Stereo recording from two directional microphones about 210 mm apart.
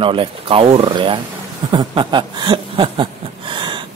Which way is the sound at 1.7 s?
20° right (ahead or behind).